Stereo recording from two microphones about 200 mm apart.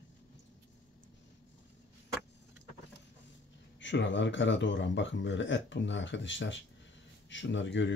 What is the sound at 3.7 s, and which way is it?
Speech, 65° left (ahead or behind).